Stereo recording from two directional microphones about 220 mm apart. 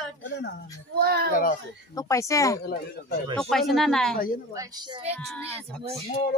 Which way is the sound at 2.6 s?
45° left (ahead or behind).